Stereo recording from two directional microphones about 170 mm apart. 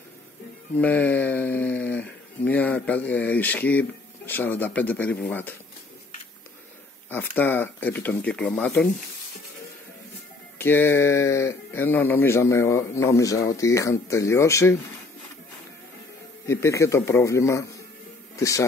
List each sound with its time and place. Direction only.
0.7 s speech: 10° left (ahead or behind)
7.1 s speech: 10° left (ahead or behind)
10.6 s speech: 15° left (ahead or behind)
16.4 s speech: 15° left (ahead or behind)